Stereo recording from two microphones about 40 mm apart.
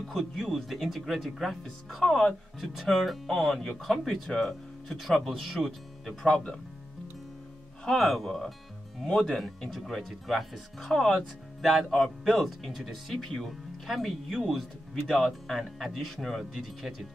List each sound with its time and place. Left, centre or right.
0.0 s speech: centre
5.6 s speech: centre
8.0 s speech: centre
9.0 s speech: centre
9.4 s speech: centre